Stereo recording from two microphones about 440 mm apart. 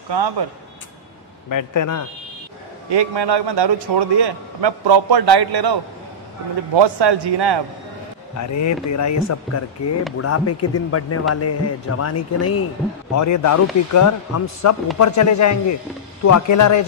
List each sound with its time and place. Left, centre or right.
0.1 s speech: right
1.5 s a man's voice: left
2.9 s a man's voice: right
6.7 s a man's voice: right
8.4 s speech: left